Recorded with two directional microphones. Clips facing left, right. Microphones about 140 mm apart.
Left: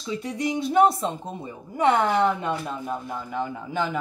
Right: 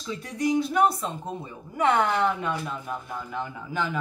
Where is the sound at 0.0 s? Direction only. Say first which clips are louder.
Even; 20° left (ahead or behind).